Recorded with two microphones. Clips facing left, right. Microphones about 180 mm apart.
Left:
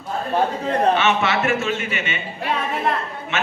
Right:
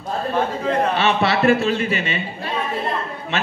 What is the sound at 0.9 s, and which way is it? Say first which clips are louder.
A man's voice: right 1 dB; 35° right (ahead or behind).